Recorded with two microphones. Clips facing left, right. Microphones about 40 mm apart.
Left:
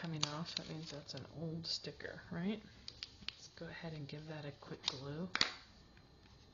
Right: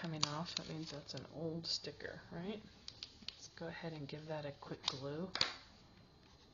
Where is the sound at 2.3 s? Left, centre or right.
Left.